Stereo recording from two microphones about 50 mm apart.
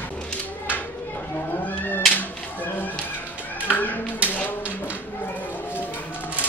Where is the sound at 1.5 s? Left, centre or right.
Left.